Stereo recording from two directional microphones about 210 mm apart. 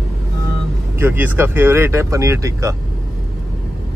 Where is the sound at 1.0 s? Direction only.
10° right (ahead or behind).